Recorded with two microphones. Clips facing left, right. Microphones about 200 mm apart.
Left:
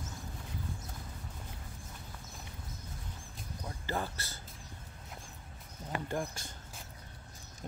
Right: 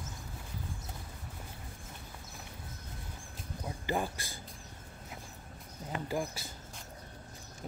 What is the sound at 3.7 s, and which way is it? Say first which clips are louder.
Speech: right 3 dB; 15° right (ahead or behind).